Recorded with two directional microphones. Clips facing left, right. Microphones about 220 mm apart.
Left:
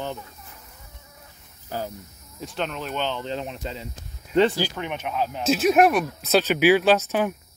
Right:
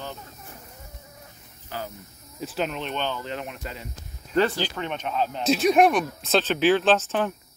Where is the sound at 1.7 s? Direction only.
45° left (ahead or behind).